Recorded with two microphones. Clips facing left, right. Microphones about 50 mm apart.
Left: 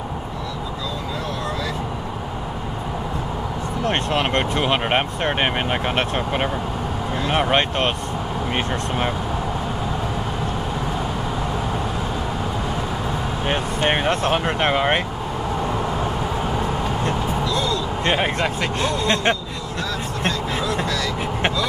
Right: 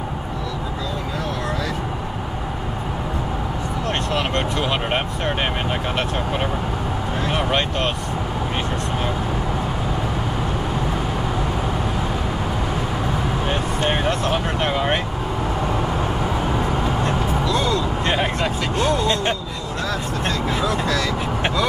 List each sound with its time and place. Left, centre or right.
3.9 s a sound: left
4.6 s speech: left
13.5 s speech: left
17.6 s basketball bounce: right
18.0 s speech: left
18.6 s speech: left